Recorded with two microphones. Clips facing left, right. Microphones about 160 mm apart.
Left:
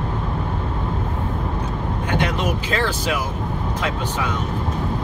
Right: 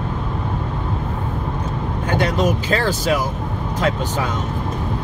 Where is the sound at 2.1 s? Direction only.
40° right (ahead or behind).